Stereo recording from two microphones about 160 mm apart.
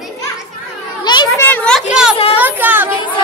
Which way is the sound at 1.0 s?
25° left (ahead or behind).